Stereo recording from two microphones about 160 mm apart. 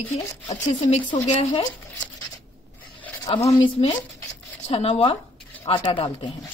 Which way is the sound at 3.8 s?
35° left (ahead or behind).